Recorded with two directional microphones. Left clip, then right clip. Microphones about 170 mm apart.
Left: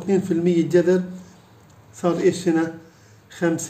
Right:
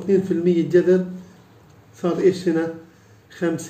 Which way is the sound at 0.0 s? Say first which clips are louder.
Right 2 dB; 35° left (ahead or behind).